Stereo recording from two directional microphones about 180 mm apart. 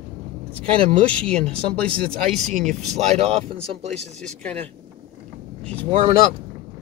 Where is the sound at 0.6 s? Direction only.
30° right (ahead or behind).